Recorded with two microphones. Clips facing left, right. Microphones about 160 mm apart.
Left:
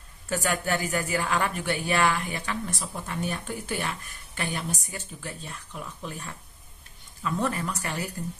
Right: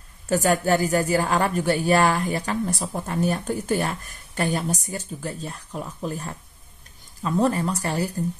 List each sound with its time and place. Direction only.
0.3 s a woman's voice: 40° right (ahead or behind)